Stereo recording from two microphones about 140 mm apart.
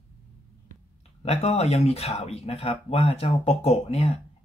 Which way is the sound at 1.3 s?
50° left (ahead or behind).